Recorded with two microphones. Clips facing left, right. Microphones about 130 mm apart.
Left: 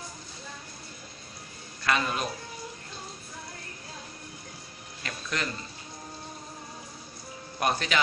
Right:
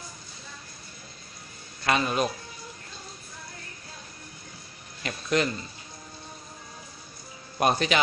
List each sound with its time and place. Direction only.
1.9 s speech: 20° right (ahead or behind)
5.0 s speech: 20° right (ahead or behind)
7.5 s speech: 20° right (ahead or behind)